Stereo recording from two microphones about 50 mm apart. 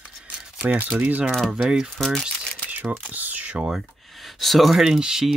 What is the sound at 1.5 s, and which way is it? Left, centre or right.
Speech, centre.